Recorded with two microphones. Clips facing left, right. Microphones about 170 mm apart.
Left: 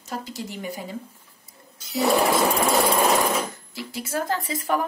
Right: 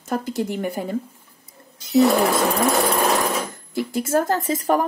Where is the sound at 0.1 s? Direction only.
55° right (ahead or behind).